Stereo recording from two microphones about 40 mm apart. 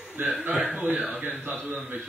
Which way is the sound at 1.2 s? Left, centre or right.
Right.